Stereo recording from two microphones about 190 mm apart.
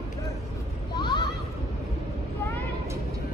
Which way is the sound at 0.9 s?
25° left (ahead or behind).